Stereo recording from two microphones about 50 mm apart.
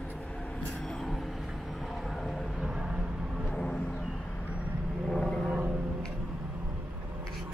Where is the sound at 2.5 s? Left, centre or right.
Centre.